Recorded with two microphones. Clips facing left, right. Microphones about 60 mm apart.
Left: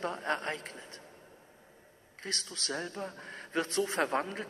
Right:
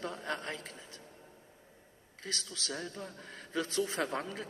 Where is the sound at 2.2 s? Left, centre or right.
Left.